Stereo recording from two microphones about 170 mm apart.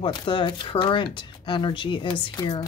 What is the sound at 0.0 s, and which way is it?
Speech, 30° left (ahead or behind).